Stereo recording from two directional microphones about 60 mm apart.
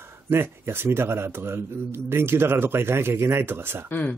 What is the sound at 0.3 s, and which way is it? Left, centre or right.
A man's voice, right.